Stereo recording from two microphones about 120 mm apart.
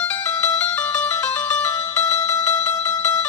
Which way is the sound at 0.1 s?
15° left (ahead or behind).